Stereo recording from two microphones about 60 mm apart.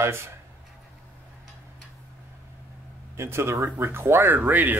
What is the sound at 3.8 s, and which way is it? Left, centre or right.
Speech, right.